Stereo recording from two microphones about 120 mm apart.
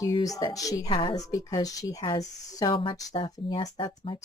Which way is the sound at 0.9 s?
40° left (ahead or behind).